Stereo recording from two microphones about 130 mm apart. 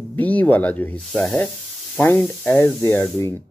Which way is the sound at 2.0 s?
20° left (ahead or behind).